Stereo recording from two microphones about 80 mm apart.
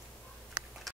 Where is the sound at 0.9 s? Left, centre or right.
Centre.